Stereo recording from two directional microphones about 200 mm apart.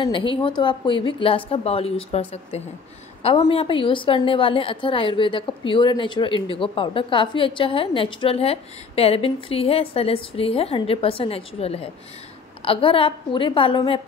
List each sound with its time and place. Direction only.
0.0 s a woman's voice: 25° left (ahead or behind)